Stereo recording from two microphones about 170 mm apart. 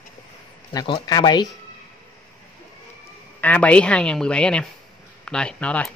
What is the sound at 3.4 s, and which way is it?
Speech, 10° left (ahead or behind).